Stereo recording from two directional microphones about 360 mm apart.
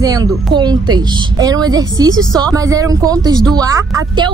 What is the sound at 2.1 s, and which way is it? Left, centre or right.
Speech, centre.